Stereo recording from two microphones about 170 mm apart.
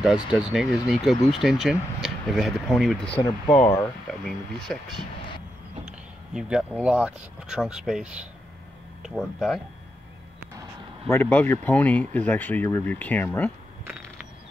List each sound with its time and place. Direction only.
0.3 s speech: 5° right (ahead or behind)
3.1 s speech: 35° left (ahead or behind)
3.5 s speech: 20° left (ahead or behind)
4.1 s speech: 5° left (ahead or behind)
11.1 s speech: 10° left (ahead or behind)